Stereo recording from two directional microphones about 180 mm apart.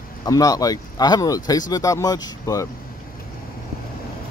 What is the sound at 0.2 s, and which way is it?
Speech, 20° left (ahead or behind).